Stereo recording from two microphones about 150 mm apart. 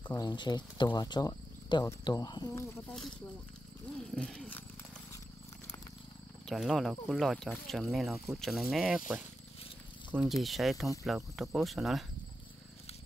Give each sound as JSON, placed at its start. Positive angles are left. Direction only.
{"t": 0.2, "sound": "speech", "side_deg": 30}
{"t": 4.1, "sound": "speech", "side_deg": 0}
{"t": 6.4, "sound": "speech", "side_deg": 0}
{"t": 10.2, "sound": "speech", "side_deg": 0}